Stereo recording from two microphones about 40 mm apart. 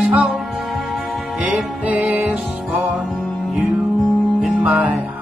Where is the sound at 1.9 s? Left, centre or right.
Right.